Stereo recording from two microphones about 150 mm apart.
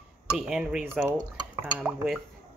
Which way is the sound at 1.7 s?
5° right (ahead or behind).